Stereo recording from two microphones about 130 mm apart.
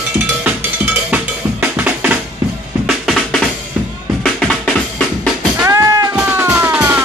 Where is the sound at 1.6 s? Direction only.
10° right (ahead or behind).